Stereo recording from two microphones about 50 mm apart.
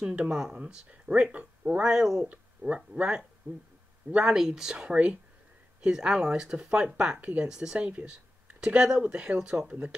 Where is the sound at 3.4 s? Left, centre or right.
Right.